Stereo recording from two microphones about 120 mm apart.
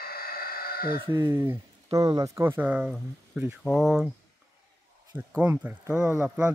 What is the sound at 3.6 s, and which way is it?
Speech, centre (ahead or behind).